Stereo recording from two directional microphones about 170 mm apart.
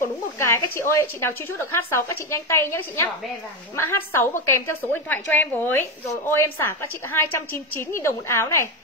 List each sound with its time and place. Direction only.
0.4 s a woman's voice: 15° left (ahead or behind)